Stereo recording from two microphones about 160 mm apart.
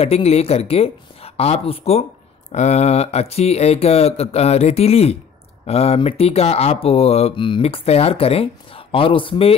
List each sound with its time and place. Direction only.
0.0 s speech: 40° left (ahead or behind)